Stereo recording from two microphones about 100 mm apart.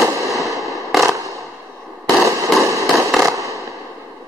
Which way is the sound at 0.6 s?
Centre (ahead or behind).